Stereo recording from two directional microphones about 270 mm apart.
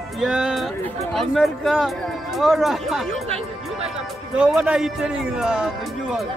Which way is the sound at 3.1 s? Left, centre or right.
Right.